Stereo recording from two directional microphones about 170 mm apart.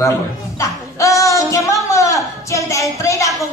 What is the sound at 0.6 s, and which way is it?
A man's voice, 20° left (ahead or behind).